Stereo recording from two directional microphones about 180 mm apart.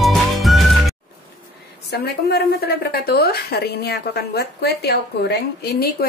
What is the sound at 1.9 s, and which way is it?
A woman's voice, 60° left (ahead or behind).